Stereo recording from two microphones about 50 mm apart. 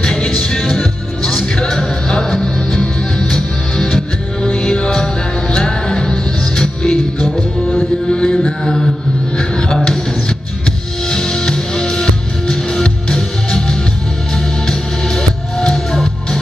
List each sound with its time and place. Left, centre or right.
0.0 s music: centre
8.1 s music: centre
9.4 s music: centre
11.1 s music: centre